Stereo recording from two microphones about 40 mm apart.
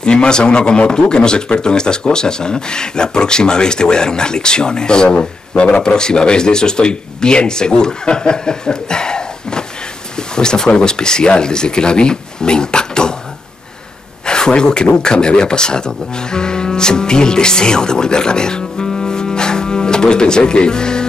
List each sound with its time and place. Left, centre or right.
0.0 s speech: left
14.2 s speech: centre